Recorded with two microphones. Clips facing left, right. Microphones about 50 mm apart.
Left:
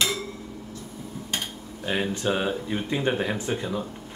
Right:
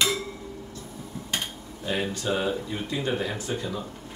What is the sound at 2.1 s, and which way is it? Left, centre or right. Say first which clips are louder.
Speech: left 1 dB; left.